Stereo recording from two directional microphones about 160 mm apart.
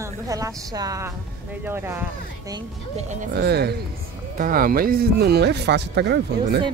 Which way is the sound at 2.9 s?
45° right (ahead or behind).